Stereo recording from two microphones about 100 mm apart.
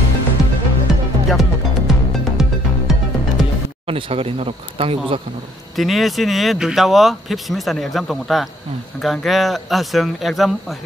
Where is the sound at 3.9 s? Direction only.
70° right (ahead or behind).